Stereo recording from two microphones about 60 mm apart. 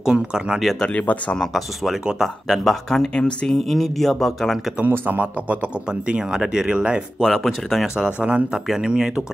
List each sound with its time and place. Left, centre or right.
0.0 s speech: centre
0.9 s speech: left
1.4 s speech: centre
3.7 s speech: centre
4.8 s speech: right
6.0 s speech: centre
7.2 s speech: centre
7.8 s speech: centre